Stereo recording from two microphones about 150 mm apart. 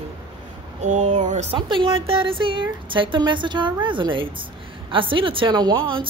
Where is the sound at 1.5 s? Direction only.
35° right (ahead or behind).